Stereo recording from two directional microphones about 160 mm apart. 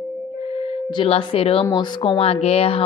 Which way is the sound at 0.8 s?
35° left (ahead or behind).